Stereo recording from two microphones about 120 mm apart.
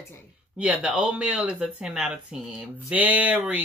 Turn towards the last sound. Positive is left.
turn(degrees=-10)  # may be behind; listen again after turning